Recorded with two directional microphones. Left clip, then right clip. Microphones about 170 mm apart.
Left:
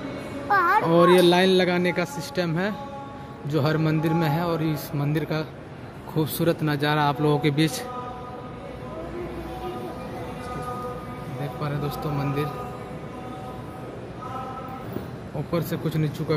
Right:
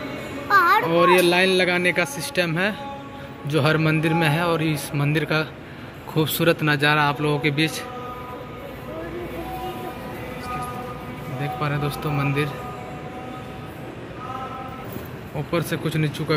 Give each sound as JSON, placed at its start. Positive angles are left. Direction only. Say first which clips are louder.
{"t": 0.8, "sound": "a man's voice", "louder": "even", "side_deg": 30}
{"t": 11.6, "sound": "speech", "louder": "right 3 dB", "side_deg": 0}
{"t": 15.5, "sound": "a man's voice", "louder": "right 3 dB", "side_deg": 10}